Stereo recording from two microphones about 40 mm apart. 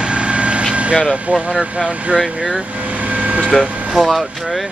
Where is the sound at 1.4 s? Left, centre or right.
Right.